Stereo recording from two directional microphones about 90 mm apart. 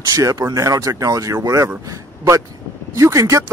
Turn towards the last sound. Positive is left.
turn(degrees=-35)  # may be behind; listen again after turning